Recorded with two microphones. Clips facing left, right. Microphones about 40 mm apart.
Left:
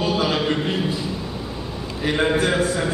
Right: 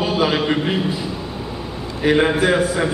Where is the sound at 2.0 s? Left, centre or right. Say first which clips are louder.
Right 4 dB; centre.